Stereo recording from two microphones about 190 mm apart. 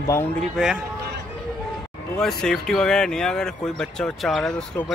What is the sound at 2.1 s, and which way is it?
Speech, 5° left (ahead or behind).